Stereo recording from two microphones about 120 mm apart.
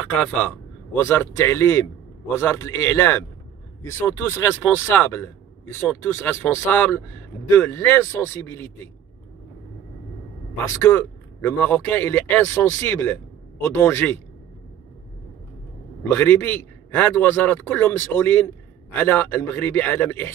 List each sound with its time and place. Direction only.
0.0 s speech: 10° left (ahead or behind)
10.8 s a man's voice: 15° left (ahead or behind)
16.0 s a man's voice: 15° left (ahead or behind)